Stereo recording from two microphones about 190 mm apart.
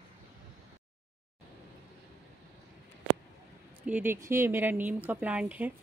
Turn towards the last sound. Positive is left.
turn(degrees=-10)  # may be behind; listen again after turning